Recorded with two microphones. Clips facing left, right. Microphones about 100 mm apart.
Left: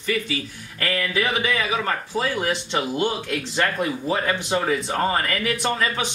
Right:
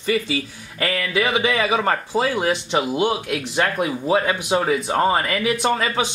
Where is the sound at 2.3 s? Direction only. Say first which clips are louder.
Right 4 dB; 15° right (ahead or behind).